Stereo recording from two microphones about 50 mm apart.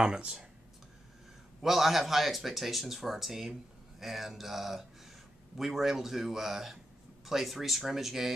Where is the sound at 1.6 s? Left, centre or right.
Centre.